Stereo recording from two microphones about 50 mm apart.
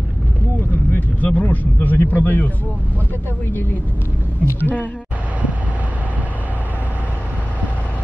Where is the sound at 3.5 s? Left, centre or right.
Left.